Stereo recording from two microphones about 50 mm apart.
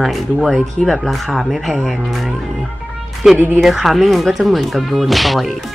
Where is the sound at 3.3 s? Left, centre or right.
Right.